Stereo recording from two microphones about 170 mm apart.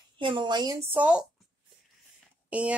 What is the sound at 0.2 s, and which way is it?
Speech, 30° right (ahead or behind).